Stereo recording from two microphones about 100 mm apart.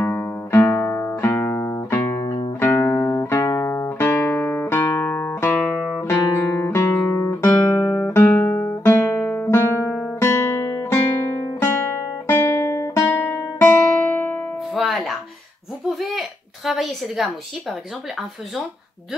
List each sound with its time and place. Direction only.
0.0 s music: 25° left (ahead or behind)
6.4 s guitar: 20° left (ahead or behind)
9.2 s guitar: 15° left (ahead or behind)
9.5 s music: 25° left (ahead or behind)
10.2 s guitar: 25° left (ahead or behind)
11.6 s music: 25° left (ahead or behind)
13.1 s music: 20° left (ahead or behind)
14.8 s music: centre (ahead or behind)
15.9 s a sound: centre (ahead or behind)